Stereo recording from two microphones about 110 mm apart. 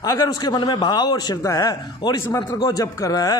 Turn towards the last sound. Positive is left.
turn(degrees=35)  # may be behind; listen again after turning